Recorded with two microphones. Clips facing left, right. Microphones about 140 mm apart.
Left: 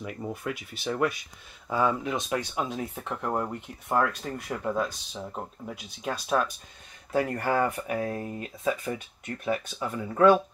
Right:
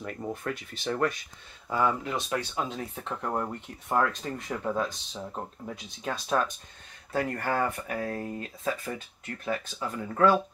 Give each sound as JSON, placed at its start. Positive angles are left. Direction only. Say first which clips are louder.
{"t": 0.0, "sound": "speech", "louder": "even", "side_deg": 5}